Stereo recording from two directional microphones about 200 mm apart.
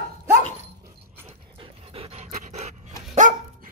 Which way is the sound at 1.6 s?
30° right (ahead or behind).